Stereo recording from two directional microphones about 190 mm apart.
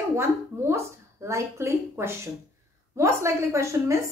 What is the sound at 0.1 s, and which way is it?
A woman's voice, 15° right (ahead or behind).